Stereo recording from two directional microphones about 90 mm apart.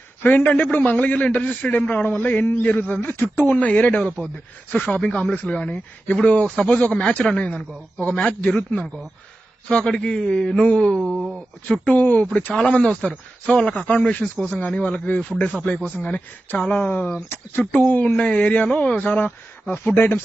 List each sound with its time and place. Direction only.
0.2 s a man's voice: 15° left (ahead or behind)
11.0 s speech: 10° right (ahead or behind)
11.6 s a man's voice: 10° left (ahead or behind)